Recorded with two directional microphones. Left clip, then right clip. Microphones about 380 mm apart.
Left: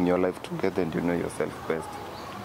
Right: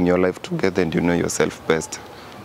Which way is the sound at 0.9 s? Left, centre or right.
Right.